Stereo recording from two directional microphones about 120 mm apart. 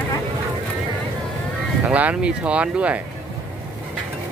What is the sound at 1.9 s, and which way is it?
Speech, 10° right (ahead or behind).